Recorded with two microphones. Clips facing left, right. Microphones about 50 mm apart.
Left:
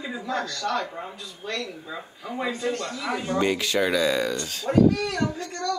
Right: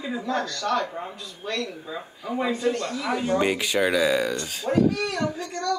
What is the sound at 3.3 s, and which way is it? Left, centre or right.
A man's voice, centre.